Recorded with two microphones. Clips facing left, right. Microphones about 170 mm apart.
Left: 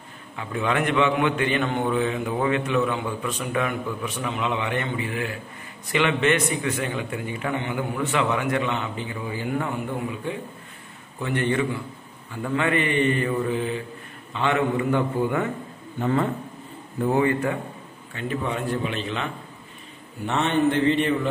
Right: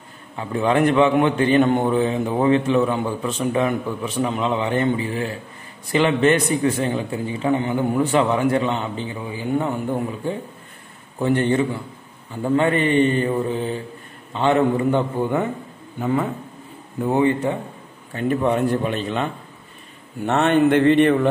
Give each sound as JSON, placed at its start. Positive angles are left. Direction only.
{"t": 0.4, "sound": "a man's voice", "side_deg": -35}
{"t": 9.9, "sound": "a man's voice", "side_deg": -35}
{"t": 16.0, "sound": "speech", "side_deg": -10}
{"t": 17.1, "sound": "speech", "side_deg": -20}
{"t": 18.1, "sound": "speech", "side_deg": -50}
{"t": 20.2, "sound": "a man's voice", "side_deg": -55}